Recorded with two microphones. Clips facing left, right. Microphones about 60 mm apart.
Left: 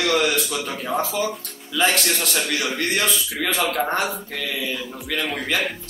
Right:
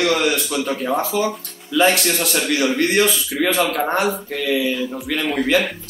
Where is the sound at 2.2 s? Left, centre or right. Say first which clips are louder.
Right 5 dB; right.